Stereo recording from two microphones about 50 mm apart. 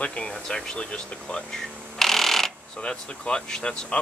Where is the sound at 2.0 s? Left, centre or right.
Centre.